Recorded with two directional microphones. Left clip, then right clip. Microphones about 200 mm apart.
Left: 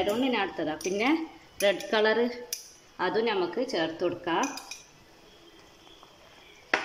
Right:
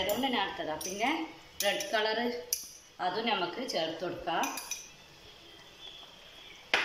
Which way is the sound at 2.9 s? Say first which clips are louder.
Left 5 dB; 55° left (ahead or behind).